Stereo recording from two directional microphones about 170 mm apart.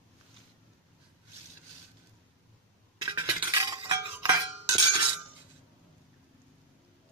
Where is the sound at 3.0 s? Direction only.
25° right (ahead or behind).